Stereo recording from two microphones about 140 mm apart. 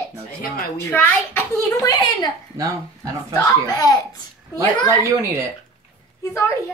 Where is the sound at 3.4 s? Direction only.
25° left (ahead or behind).